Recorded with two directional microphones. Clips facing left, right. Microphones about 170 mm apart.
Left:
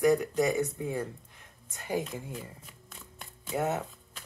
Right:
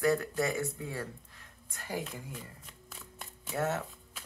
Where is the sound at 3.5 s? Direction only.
15° left (ahead or behind).